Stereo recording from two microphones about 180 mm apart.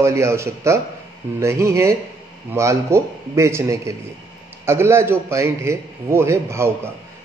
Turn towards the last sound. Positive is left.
turn(degrees=-15)  # may be behind; listen again after turning